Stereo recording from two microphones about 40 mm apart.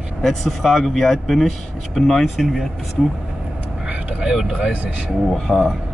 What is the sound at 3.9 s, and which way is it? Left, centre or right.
Vehicle, right.